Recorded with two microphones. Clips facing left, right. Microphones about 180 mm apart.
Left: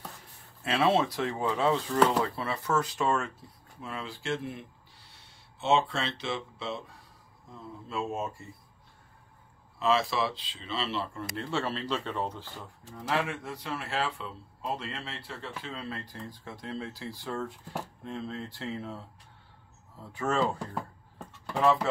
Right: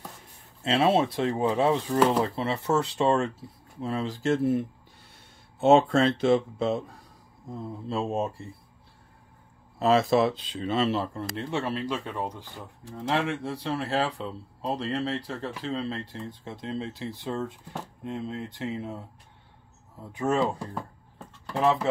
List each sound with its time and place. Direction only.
0.6 s speech: 25° right (ahead or behind); by 6.8 s 45° right (ahead or behind)
7.4 s speech: 35° right (ahead or behind)
9.8 s speech: 45° right (ahead or behind)
11.3 s speech: 20° right (ahead or behind)
12.9 s speech: 25° right (ahead or behind)